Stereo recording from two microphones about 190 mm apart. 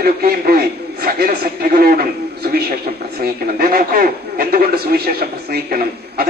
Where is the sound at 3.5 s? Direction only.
50° right (ahead or behind).